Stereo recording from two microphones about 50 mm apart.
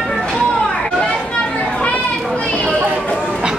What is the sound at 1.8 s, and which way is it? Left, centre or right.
Children playing, left.